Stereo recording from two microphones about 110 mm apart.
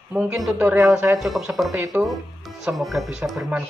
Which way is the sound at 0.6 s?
20° right (ahead or behind).